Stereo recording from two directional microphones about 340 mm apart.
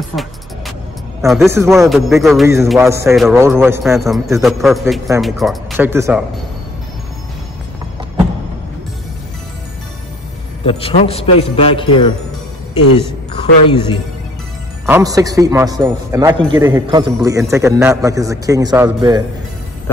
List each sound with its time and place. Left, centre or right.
0.1 s music: centre
1.2 s a man's voice: centre
10.6 s a man's voice: centre
13.7 s a man's voice: centre
14.9 s a man's voice: centre